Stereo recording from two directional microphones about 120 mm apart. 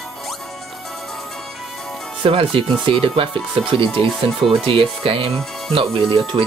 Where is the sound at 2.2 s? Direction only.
50° right (ahead or behind).